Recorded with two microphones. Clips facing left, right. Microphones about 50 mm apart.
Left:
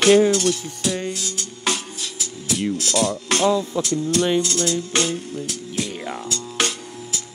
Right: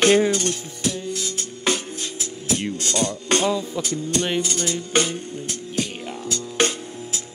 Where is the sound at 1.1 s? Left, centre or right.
Centre.